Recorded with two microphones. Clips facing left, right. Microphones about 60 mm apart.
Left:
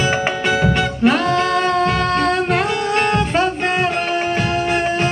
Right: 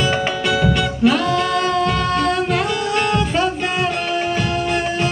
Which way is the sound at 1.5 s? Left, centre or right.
Centre.